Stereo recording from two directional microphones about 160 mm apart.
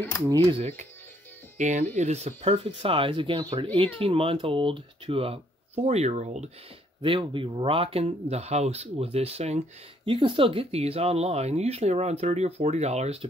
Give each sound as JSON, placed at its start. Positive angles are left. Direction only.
{"t": 1.6, "sound": "speech", "side_deg": -50}
{"t": 7.0, "sound": "speech", "side_deg": -30}